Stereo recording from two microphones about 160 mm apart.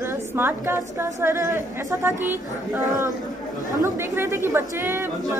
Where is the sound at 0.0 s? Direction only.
15° right (ahead or behind).